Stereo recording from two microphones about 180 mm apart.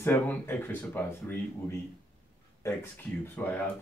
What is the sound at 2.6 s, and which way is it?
Speech, 15° left (ahead or behind).